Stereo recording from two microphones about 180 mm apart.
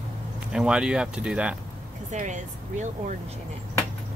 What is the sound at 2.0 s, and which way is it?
Speech, 45° right (ahead or behind).